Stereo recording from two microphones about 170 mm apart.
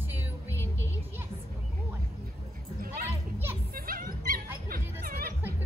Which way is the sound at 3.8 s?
60° right (ahead or behind).